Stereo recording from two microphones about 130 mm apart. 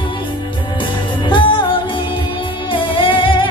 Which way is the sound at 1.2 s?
40° left (ahead or behind).